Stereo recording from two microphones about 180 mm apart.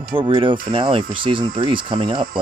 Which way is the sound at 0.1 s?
30° right (ahead or behind).